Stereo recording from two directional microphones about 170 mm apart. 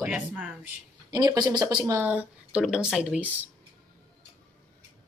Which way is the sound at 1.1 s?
25° right (ahead or behind).